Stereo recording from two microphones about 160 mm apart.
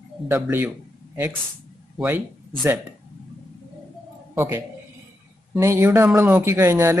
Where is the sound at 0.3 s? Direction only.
15° right (ahead or behind).